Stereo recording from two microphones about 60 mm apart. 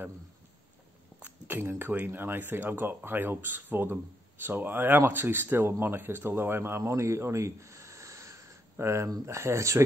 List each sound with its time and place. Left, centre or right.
1.2 s speech: right
6.8 s a sound: right
9.2 s speech: right